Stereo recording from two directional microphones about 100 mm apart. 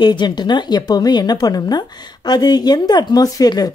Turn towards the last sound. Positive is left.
turn(degrees=40)  # may be behind; listen again after turning